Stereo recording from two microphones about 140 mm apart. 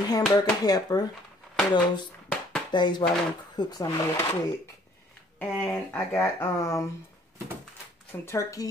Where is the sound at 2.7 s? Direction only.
35° left (ahead or behind).